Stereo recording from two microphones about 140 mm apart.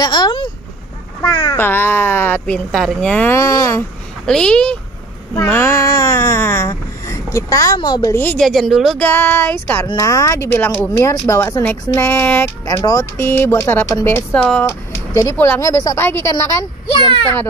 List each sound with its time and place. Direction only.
0.0 s speech: 30° left (ahead or behind)
1.6 s speech: 15° left (ahead or behind)
3.3 s speech: 20° left (ahead or behind)
4.3 s speech: 5° left (ahead or behind); by 8.2 s 30° left (ahead or behind)
8.4 s speech: centre (ahead or behind)
9.0 s speech: 15° left (ahead or behind)
14.7 s speech: 20° left (ahead or behind)